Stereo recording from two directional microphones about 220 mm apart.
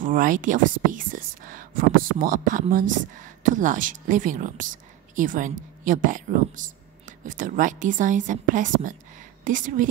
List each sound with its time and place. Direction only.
0.0 s a woman's voice: 35° right (ahead or behind)